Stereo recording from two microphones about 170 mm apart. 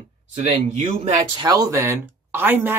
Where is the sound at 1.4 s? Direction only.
20° right (ahead or behind).